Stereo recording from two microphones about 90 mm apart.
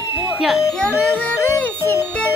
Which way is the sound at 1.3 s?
25° left (ahead or behind).